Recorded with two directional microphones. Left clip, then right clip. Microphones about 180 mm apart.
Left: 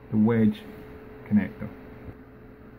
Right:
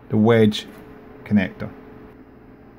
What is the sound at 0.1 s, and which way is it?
Speech, 50° right (ahead or behind).